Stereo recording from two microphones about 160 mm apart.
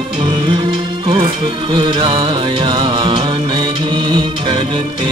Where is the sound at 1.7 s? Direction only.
30° right (ahead or behind).